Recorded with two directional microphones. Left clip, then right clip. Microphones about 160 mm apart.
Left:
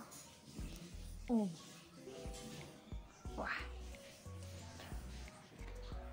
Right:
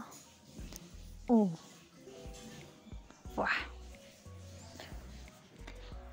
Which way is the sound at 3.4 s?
60° right (ahead or behind).